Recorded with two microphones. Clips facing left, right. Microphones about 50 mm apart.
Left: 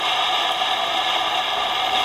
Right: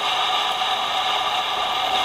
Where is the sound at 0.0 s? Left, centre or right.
Left.